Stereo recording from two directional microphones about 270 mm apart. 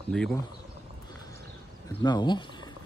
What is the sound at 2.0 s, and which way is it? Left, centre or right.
Speech, centre.